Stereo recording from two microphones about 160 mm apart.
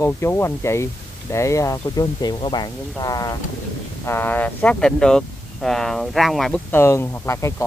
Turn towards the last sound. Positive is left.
turn(degrees=20)  # may be behind; listen again after turning